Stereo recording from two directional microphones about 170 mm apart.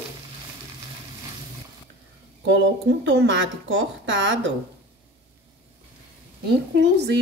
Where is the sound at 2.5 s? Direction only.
90° right.